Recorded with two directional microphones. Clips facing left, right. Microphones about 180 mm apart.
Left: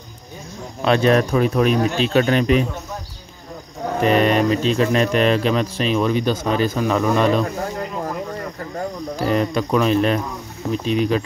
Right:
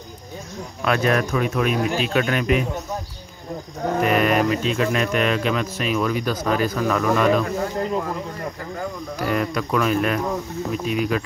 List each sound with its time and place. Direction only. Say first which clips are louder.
0.8 s speech: left 4 dB; 30° left (ahead or behind)
4.0 s speech: left 3 dB; 30° left (ahead or behind)
9.2 s speech: left 3 dB; 25° left (ahead or behind)